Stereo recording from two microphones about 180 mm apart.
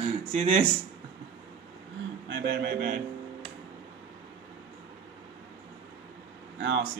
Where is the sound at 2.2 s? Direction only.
65° right (ahead or behind).